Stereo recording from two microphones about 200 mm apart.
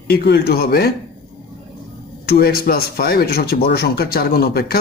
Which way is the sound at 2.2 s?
50° left (ahead or behind).